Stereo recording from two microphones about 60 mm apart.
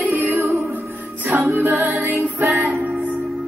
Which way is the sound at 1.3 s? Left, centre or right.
Right.